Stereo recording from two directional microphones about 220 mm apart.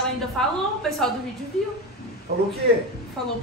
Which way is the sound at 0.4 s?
Centre (ahead or behind).